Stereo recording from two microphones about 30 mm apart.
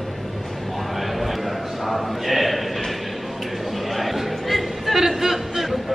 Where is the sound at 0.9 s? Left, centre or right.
Centre.